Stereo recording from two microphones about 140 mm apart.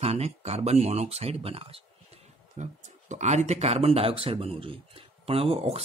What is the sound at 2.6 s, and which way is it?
Speech, 55° right (ahead or behind).